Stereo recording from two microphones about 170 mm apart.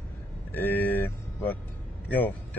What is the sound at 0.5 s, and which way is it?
Speech, 10° left (ahead or behind).